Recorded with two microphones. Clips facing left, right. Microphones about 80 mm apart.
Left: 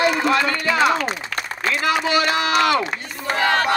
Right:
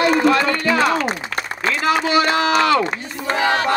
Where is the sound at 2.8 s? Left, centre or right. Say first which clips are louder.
Right 3 dB; right.